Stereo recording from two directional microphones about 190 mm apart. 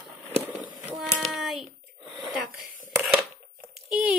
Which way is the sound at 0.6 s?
15° right (ahead or behind).